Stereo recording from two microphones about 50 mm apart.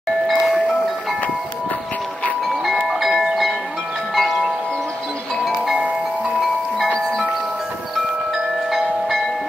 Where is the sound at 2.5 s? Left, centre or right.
Centre.